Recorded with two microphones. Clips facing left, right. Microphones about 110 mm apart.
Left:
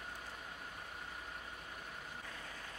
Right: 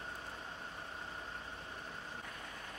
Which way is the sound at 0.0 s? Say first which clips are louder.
Right 2 dB; 30° right (ahead or behind).